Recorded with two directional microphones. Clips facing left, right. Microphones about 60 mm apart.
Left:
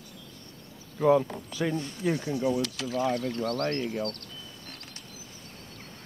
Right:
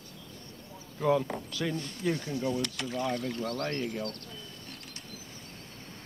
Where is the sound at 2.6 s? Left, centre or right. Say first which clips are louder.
Left 4 dB; centre.